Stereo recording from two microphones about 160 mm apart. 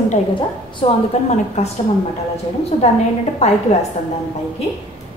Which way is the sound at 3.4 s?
45° left (ahead or behind).